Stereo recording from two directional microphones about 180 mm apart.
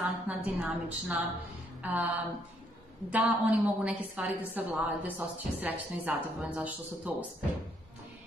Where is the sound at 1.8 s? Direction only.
10° right (ahead or behind).